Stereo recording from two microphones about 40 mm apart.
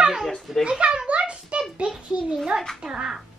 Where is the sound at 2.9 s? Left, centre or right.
Centre.